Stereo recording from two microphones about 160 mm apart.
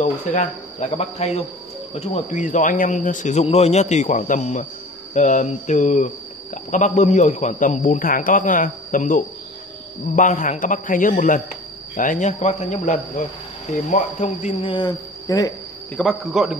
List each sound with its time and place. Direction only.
0.0 s speech: 45° left (ahead or behind); by 15.5 s 25° left (ahead or behind)
16.0 s speech: centre (ahead or behind)